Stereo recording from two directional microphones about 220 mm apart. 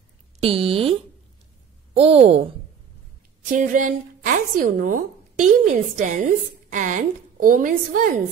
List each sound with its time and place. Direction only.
0.4 s speech: 25° right (ahead or behind)
2.0 s speech: 25° right (ahead or behind)
3.5 s speech: 35° right (ahead or behind)